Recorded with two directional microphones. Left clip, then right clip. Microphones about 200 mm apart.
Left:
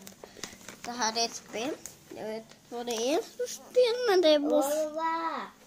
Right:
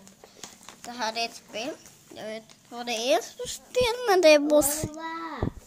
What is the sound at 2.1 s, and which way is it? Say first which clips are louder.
A child's voice: right 1 dB; 30° right (ahead or behind).